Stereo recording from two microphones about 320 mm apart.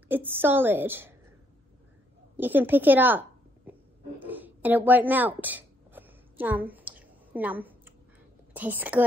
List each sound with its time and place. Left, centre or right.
0.1 s a woman's voice: centre
2.3 s a woman's voice: centre
4.2 s a sound: centre
8.5 s a woman's voice: centre